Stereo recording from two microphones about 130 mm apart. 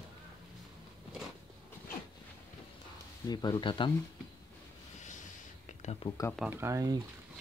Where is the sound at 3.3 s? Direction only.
30° left (ahead or behind).